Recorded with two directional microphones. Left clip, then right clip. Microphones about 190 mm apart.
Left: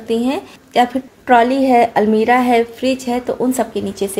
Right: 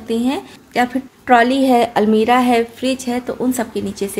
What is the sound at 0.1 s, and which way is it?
A woman's voice, 5° left (ahead or behind).